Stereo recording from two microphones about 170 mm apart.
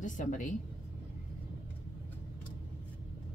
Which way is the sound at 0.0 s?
45° left (ahead or behind).